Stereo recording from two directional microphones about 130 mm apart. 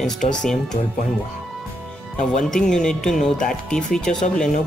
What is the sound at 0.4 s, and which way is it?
Speech, 5° left (ahead or behind).